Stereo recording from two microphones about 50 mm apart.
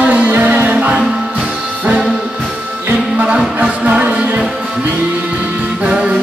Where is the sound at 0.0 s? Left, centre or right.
Right.